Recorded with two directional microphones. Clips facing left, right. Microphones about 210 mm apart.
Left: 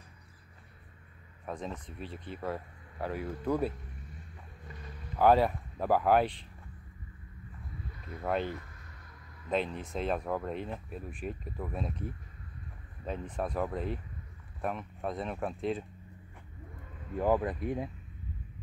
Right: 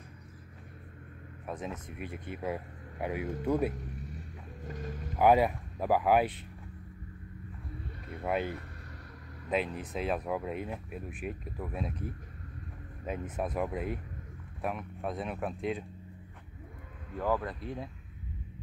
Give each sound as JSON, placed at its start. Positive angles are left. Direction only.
{"t": 1.4, "sound": "speech", "side_deg": -5}
{"t": 4.6, "sound": "vehicle", "side_deg": -45}
{"t": 5.1, "sound": "speech", "side_deg": -10}
{"t": 8.2, "sound": "speech", "side_deg": -5}
{"t": 13.0, "sound": "speech", "side_deg": -10}
{"t": 17.2, "sound": "speech", "side_deg": 20}